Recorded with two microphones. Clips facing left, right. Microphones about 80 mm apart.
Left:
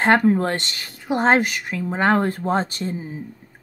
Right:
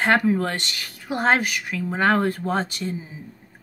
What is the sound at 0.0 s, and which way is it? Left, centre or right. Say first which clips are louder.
A woman's voice: left 3 dB; left.